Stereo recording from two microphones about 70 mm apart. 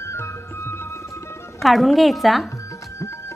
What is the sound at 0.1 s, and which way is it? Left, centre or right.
Music, left.